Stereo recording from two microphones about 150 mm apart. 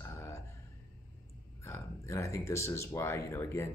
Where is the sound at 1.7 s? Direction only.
20° left (ahead or behind).